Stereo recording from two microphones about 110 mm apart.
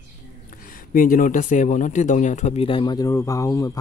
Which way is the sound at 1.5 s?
90° left.